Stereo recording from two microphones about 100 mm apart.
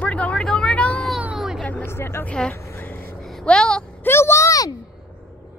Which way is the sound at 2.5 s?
20° left (ahead or behind).